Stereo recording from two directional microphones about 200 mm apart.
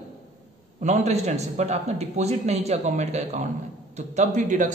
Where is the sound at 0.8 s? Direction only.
35° right (ahead or behind).